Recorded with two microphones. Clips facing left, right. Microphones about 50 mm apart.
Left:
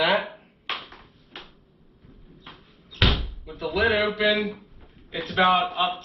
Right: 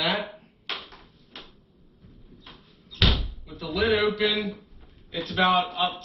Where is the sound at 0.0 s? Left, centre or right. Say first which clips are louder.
Left 5 dB; centre.